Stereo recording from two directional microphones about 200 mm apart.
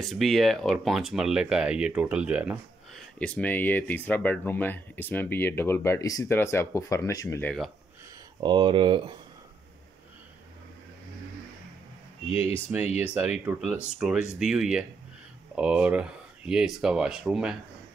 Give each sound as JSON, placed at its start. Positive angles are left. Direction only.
{"t": 0.0, "sound": "speech", "side_deg": 0}
{"t": 3.2, "sound": "speech", "side_deg": 5}
{"t": 8.4, "sound": "speech", "side_deg": -25}
{"t": 12.3, "sound": "speech", "side_deg": 30}
{"t": 13.0, "sound": "speech", "side_deg": -5}